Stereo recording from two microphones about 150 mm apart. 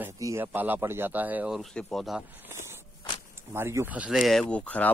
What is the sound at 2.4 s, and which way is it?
Speech, 15° right (ahead or behind).